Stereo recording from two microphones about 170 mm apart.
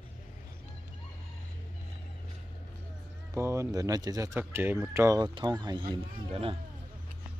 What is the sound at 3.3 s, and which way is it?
Speech, 15° right (ahead or behind).